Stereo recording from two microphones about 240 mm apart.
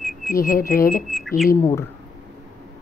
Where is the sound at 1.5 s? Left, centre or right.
Centre.